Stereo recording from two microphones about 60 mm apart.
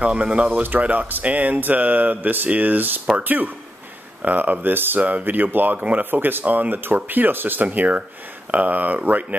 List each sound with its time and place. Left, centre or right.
0.0 s speech: centre